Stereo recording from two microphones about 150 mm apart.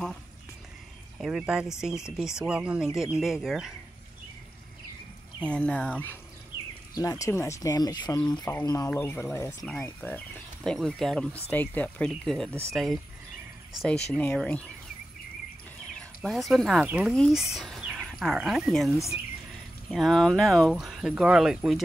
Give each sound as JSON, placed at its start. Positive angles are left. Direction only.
{"t": 1.1, "sound": "speech", "side_deg": -5}
{"t": 5.4, "sound": "speech", "side_deg": 10}
{"t": 7.0, "sound": "speech", "side_deg": 20}
{"t": 16.0, "sound": "speech", "side_deg": 0}